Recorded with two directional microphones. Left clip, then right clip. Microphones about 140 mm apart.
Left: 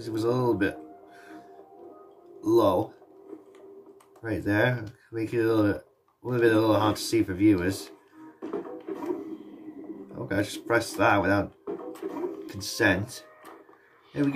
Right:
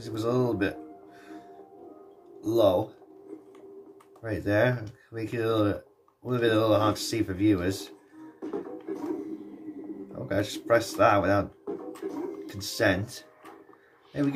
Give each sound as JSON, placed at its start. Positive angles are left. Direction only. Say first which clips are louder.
{"t": 0.0, "sound": "speech", "louder": "left 1 dB", "side_deg": 0}
{"t": 2.4, "sound": "speech", "louder": "left 1 dB", "side_deg": 0}
{"t": 4.2, "sound": "speech", "louder": "even", "side_deg": 0}
{"t": 8.4, "sound": "music", "louder": "left 1 dB", "side_deg": 5}
{"t": 10.2, "sound": "speech", "louder": "even", "side_deg": 0}
{"t": 11.0, "sound": "a sound", "louder": "left 1 dB", "side_deg": 0}